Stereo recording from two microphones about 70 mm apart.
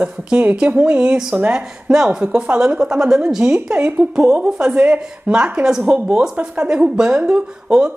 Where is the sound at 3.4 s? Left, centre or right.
Right.